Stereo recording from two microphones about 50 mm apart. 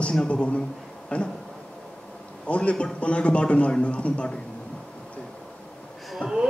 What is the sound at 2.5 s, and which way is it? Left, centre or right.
A man's voice, left.